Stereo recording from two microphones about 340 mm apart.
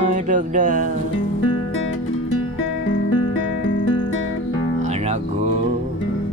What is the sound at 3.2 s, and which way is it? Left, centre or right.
Guitar, left.